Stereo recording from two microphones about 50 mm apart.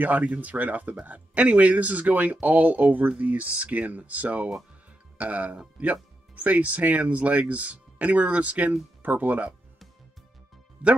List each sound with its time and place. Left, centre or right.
0.0 s speech: right
10.8 s speech: right